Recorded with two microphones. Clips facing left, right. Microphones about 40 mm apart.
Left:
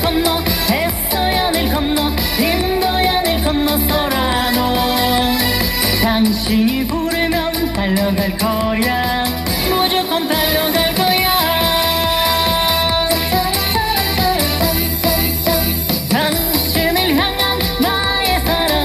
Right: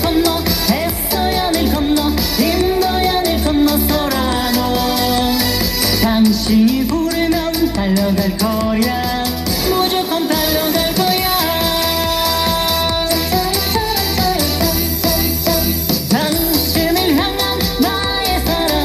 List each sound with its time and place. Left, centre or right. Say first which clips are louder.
0.1 s music: right 1 dB; left
1.9 s music: right 2 dB; left
6.0 s music: right 4 dB; left
7.9 s music: right 1 dB; left